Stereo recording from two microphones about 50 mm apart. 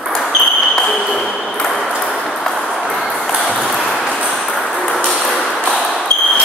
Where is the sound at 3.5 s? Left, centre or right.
Centre.